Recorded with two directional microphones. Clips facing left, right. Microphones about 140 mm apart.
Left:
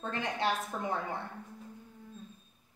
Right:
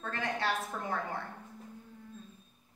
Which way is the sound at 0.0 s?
20° left (ahead or behind).